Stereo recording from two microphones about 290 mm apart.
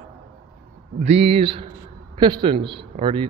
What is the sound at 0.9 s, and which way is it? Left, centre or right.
A man's voice, right.